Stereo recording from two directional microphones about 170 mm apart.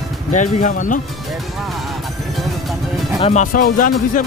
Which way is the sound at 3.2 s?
45° left (ahead or behind).